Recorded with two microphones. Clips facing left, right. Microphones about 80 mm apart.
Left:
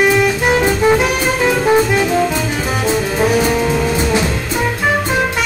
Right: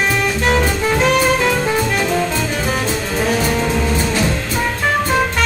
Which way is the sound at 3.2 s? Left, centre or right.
Centre.